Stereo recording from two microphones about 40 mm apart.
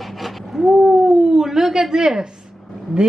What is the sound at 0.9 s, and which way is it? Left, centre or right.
Howl, centre.